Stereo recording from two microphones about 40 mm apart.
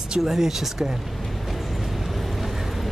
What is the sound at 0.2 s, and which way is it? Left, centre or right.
Speech, centre.